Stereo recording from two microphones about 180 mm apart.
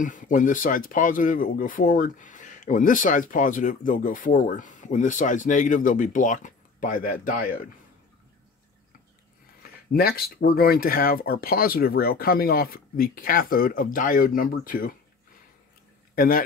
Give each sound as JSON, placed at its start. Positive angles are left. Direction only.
{"t": 0.0, "sound": "speech", "side_deg": 45}
{"t": 9.9, "sound": "speech", "side_deg": 60}
{"t": 16.2, "sound": "speech", "side_deg": 50}